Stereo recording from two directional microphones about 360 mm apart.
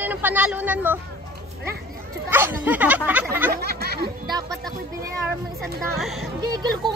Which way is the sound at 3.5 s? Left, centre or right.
Right.